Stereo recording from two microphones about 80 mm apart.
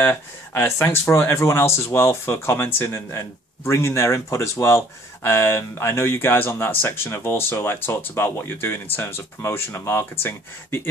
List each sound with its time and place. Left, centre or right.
0.0 s speech: left